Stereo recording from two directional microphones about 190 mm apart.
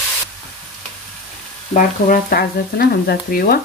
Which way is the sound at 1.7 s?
50° left (ahead or behind).